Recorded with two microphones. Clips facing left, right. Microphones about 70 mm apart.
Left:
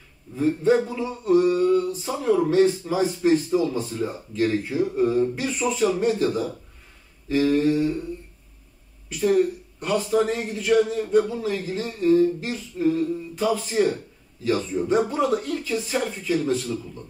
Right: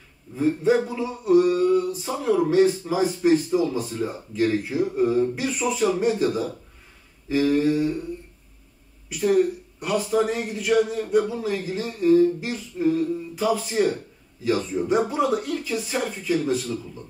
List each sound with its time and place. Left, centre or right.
0.4 s a sound: centre
2.2 s a man's voice: centre
9.1 s a man's voice: centre